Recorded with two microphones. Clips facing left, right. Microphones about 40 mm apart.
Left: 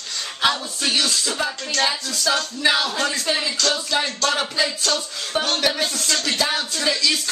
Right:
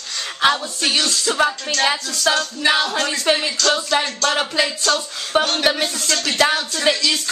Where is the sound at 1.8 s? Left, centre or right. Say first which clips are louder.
Right 3 dB; right.